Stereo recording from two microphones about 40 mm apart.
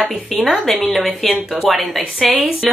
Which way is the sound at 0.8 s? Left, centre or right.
Centre.